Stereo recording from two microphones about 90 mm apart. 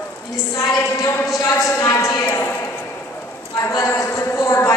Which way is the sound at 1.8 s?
30° left (ahead or behind).